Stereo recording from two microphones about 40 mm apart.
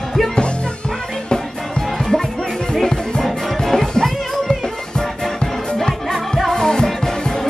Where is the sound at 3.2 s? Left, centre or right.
Centre.